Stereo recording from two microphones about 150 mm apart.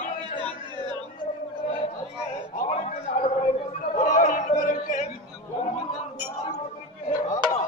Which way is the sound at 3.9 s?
55° left (ahead or behind).